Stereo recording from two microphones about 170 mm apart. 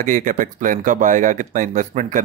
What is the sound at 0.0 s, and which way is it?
Speech, 50° right (ahead or behind).